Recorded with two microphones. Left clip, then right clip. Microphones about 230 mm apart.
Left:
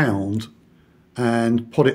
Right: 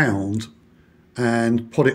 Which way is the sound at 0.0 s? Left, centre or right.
Centre.